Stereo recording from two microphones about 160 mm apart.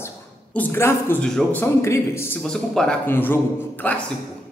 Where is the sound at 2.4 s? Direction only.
5° left (ahead or behind).